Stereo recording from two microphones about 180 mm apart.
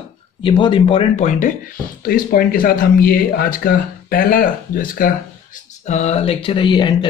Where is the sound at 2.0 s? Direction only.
55° left (ahead or behind).